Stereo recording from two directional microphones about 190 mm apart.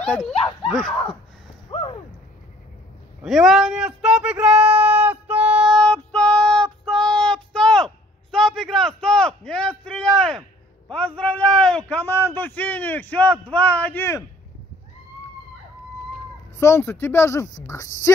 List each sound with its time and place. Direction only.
0.0 s speech: 5° left (ahead or behind)
0.3 s speech: 30° left (ahead or behind)
1.7 s a sound: 30° left (ahead or behind)
3.2 s speech: centre (ahead or behind)
5.7 s child singing: 5° left (ahead or behind)
6.9 s a sound: 5° left (ahead or behind)
10.9 s a man's voice: 5° left (ahead or behind)
16.5 s a man's voice: 15° left (ahead or behind)